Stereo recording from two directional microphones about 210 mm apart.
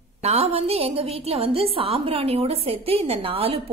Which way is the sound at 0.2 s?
30° right (ahead or behind).